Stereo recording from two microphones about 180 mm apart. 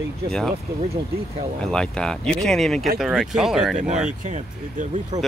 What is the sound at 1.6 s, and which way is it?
Speech, 5° left (ahead or behind).